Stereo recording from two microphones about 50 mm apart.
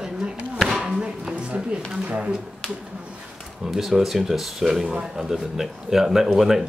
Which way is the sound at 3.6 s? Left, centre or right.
Centre.